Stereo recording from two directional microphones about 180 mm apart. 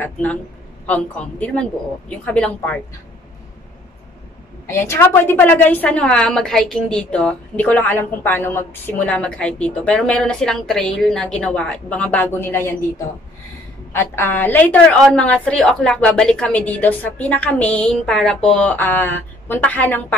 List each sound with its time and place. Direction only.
0.0 s a woman's voice: 10° left (ahead or behind)
4.6 s a woman's voice: 15° left (ahead or behind)
13.9 s a woman's voice: 15° left (ahead or behind)